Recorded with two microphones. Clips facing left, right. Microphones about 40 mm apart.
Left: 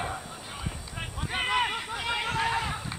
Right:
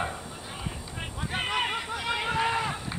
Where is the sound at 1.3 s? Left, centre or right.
Centre.